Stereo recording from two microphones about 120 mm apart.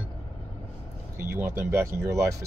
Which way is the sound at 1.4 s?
20° right (ahead or behind).